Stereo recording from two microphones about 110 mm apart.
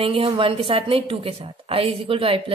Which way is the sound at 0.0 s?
55° right (ahead or behind).